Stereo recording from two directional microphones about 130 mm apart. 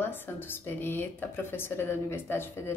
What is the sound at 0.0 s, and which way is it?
A woman's voice, 15° left (ahead or behind).